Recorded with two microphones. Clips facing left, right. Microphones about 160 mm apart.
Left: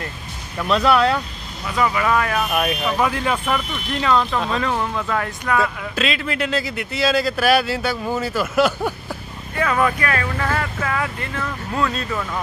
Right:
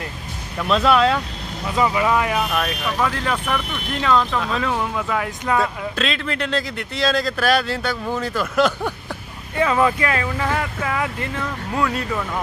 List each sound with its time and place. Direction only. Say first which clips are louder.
0.6 s speech: even; centre (ahead or behind)
1.7 s speech: right 1 dB; 20° right (ahead or behind)
2.5 s speech: left 2 dB; 15° left (ahead or behind); by 5.3 s 5° right (ahead or behind)
5.6 s speech: even; 5° left (ahead or behind)
9.6 s speech: right 2 dB; 20° right (ahead or behind)